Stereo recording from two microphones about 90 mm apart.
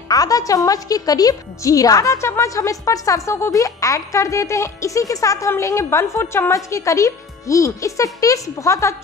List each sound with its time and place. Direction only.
0.1 s speech: 40° left (ahead or behind)